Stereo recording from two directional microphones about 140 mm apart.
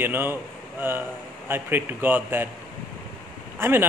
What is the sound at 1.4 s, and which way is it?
Speech, 15° right (ahead or behind).